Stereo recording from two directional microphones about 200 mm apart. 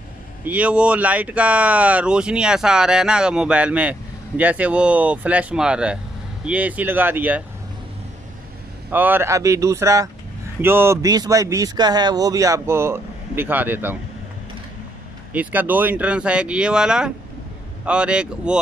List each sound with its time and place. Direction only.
0.5 s speech: 5° right (ahead or behind)
8.9 s speech: 10° right (ahead or behind)
15.3 s speech: 10° right (ahead or behind)